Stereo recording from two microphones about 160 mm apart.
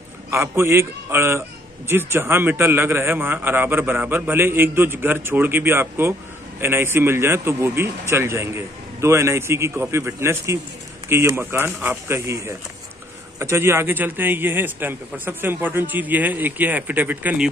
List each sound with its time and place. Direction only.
0.3 s a man's voice: 15° right (ahead or behind)